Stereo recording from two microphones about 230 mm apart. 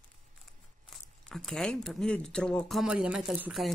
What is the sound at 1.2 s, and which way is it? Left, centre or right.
Speech, centre.